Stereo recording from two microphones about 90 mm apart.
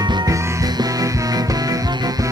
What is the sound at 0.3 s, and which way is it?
Music, 35° right (ahead or behind).